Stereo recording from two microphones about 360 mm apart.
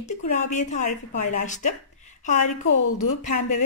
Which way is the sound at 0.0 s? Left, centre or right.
Centre.